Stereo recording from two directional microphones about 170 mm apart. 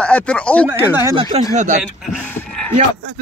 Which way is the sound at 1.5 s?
45° right (ahead or behind).